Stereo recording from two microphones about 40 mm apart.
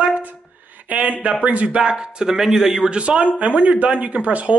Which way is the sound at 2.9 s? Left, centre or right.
Right.